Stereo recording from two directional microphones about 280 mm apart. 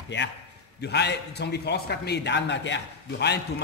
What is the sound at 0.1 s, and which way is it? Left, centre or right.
A man's voice, left.